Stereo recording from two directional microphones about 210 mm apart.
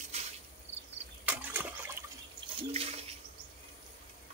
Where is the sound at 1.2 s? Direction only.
10° right (ahead or behind).